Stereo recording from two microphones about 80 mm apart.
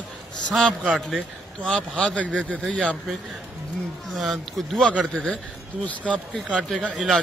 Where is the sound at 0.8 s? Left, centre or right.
Centre.